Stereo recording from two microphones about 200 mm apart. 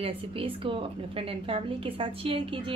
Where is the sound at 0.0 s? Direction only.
25° right (ahead or behind).